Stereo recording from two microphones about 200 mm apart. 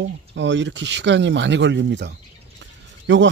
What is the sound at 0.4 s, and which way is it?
Speech, 65° right (ahead or behind).